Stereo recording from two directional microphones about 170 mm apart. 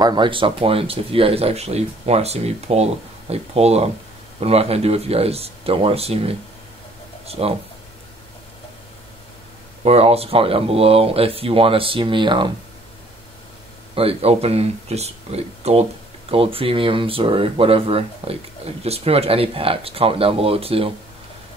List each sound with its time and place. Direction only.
0.0 s speech: 25° right (ahead or behind)
9.8 s speech: 35° right (ahead or behind)
13.9 s speech: 35° right (ahead or behind)